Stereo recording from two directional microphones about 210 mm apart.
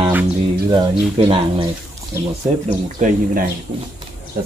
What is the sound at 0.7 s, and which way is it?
Speech, 20° right (ahead or behind).